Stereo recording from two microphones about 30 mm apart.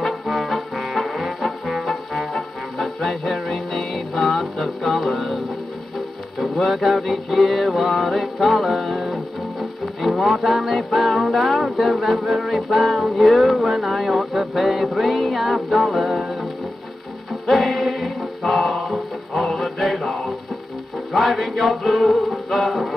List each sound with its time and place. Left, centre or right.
0.7 s trombone: centre
2.1 s music: centre
6.4 s music: centre
10.1 s music: centre
13.7 s speech: centre
14.1 s music: centre
14.5 s music: centre
17.5 s music: centre